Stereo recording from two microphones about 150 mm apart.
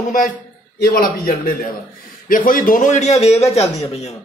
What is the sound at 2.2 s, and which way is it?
A man's voice, 65° left (ahead or behind).